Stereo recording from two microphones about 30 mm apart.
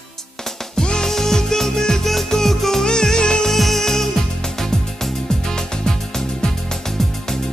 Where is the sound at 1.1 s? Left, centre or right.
Centre.